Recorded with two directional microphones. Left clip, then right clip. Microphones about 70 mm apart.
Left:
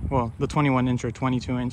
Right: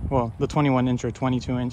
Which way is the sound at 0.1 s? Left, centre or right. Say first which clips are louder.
Right 1 dB; right.